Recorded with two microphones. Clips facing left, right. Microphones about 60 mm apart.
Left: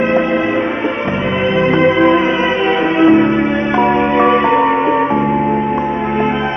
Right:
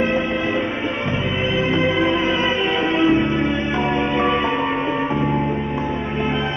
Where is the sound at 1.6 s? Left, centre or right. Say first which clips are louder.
Left 8 dB; left.